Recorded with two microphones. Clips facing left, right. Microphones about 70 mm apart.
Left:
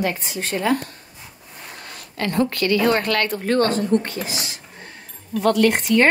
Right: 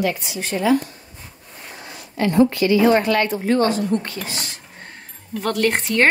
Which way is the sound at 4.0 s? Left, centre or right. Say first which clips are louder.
Left 2 dB; left.